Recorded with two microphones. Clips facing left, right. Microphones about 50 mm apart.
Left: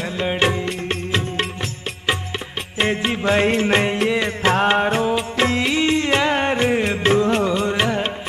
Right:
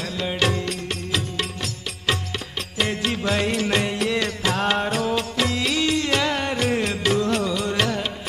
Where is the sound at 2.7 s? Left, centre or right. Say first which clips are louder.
Left 4 dB; left.